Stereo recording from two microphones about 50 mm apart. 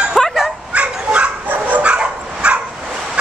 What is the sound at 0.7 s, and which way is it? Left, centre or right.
Dog, right.